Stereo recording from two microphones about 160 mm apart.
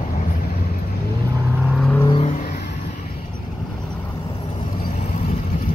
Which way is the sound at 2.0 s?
30° left (ahead or behind).